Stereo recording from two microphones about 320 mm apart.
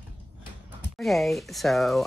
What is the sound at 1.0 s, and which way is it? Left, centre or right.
Speech, centre.